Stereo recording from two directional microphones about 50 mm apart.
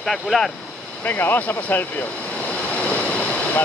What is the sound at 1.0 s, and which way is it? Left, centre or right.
Speech, left.